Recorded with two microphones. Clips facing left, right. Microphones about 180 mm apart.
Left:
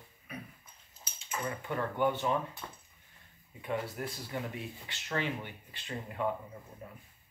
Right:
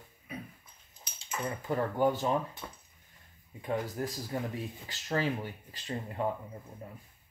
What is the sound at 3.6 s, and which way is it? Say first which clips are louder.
Speech: right 2 dB; 35° right (ahead or behind).